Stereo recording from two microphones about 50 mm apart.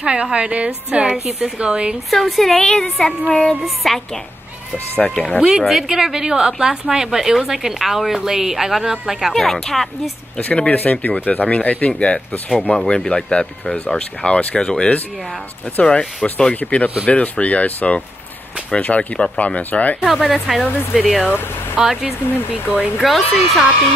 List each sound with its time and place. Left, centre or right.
0.0 s a woman's voice: centre
2.0 s a woman's voice: centre
4.7 s speech: left
5.4 s a woman's voice: centre
9.3 s a woman's voice: centre
10.3 s speech: left
20.1 s a woman's voice: centre
23.0 s a woman's voice: centre